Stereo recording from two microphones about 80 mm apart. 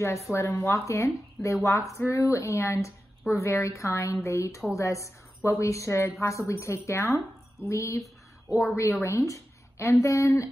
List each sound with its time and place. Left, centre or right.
0.3 s a woman's voice: left
8.5 s a woman's voice: centre
9.0 s a woman's voice: left